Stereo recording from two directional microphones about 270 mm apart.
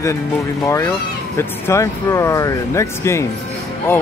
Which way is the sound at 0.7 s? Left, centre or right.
Centre.